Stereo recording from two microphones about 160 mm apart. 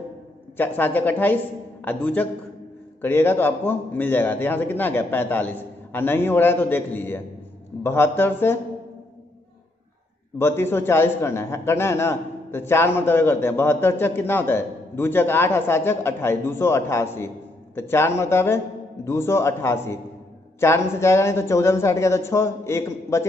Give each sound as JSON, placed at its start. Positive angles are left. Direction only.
{"t": 0.6, "sound": "a man's voice", "side_deg": 10}
{"t": 10.4, "sound": "a man's voice", "side_deg": 15}